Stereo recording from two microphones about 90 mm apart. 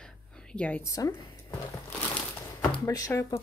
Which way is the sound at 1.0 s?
35° left (ahead or behind).